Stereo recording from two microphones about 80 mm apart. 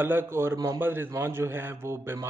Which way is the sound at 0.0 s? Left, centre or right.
Right.